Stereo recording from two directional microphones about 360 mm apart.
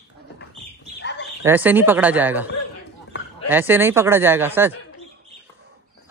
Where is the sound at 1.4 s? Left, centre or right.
Centre.